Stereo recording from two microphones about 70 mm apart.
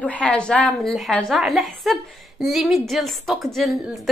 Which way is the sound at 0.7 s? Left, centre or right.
Centre.